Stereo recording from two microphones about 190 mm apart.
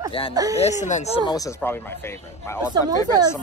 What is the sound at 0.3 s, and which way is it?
Speech, 20° right (ahead or behind).